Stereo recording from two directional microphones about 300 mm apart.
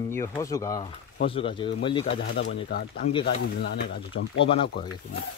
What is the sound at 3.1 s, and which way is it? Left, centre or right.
Speech, centre.